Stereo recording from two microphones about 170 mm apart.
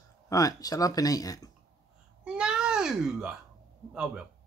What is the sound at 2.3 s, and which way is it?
A child's voice, 5° right (ahead or behind).